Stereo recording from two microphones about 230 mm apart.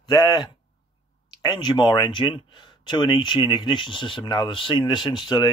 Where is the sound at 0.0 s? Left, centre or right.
Centre.